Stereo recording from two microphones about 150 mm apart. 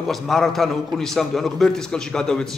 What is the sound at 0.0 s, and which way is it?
A man's voice, centre (ahead or behind).